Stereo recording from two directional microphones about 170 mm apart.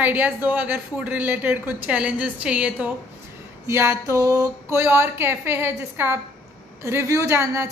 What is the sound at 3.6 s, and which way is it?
A woman's voice, 15° right (ahead or behind).